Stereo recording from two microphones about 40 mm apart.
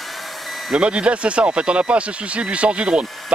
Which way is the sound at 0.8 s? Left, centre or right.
Right.